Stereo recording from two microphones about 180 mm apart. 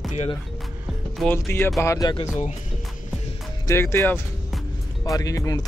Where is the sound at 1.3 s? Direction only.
10° left (ahead or behind).